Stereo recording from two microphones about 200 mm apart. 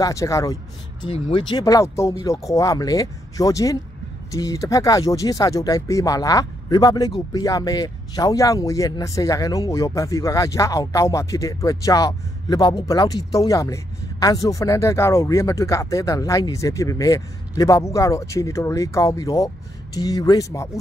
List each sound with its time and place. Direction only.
0.0 s speech: 15° left (ahead or behind)